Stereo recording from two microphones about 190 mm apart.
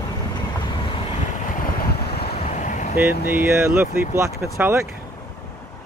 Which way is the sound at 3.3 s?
10° right (ahead or behind).